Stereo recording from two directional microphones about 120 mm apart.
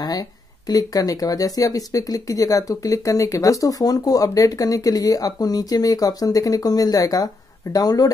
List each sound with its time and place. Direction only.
0.7 s speech: 30° left (ahead or behind)